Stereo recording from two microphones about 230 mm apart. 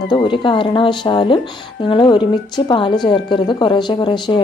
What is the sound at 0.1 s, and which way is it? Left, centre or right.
A woman's voice, left.